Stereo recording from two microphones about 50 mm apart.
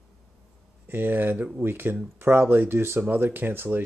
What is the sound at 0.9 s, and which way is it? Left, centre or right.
Speech, right.